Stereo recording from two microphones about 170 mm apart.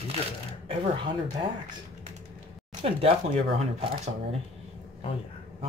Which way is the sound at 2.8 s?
35° right (ahead or behind).